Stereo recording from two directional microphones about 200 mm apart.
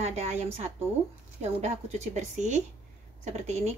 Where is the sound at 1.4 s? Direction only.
35° right (ahead or behind).